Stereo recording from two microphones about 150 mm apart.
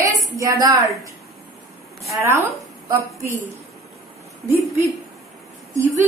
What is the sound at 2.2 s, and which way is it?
A woman's voice, 20° right (ahead or behind).